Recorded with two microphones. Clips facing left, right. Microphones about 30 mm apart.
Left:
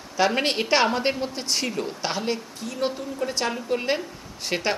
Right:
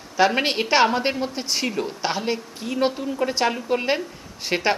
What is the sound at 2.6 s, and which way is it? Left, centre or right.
Speech, right.